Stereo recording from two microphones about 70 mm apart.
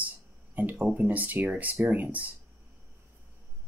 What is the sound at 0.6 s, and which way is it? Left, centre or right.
Speech, right.